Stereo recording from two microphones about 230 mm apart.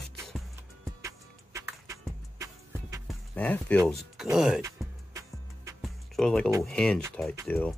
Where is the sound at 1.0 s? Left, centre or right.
Centre.